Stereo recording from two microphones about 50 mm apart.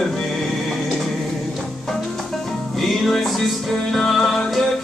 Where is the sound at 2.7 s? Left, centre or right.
Centre.